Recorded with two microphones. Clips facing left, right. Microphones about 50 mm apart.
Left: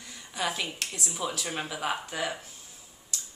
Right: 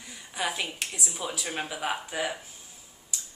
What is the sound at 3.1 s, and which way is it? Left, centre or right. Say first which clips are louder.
Tick-tock: even; centre.